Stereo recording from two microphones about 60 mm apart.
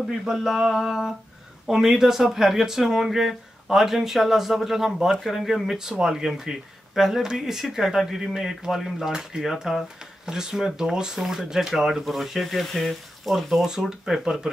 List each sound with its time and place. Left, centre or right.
0.2 s speech: centre